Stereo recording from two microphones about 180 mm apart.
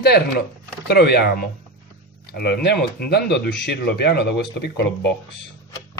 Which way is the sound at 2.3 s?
65° left (ahead or behind).